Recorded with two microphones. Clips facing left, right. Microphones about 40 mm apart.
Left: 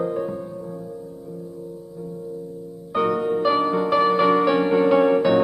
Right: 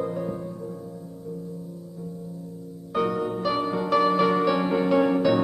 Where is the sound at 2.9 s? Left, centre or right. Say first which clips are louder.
Left 4 dB; centre.